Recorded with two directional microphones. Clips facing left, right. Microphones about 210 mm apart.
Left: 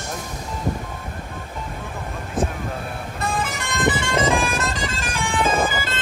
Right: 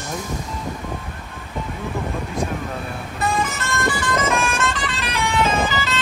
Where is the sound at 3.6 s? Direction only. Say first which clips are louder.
Left 1 dB; 15° left (ahead or behind); by 6.0 s 50° left (ahead or behind).